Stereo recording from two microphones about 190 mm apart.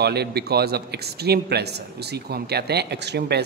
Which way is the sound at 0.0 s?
60° right (ahead or behind).